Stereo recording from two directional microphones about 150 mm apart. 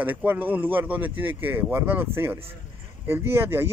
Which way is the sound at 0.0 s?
10° right (ahead or behind).